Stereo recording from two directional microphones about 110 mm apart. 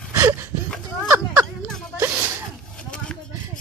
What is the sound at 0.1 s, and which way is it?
Gasp, 25° right (ahead or behind).